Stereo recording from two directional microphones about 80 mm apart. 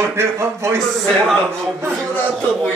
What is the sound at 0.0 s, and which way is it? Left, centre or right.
Speech, right.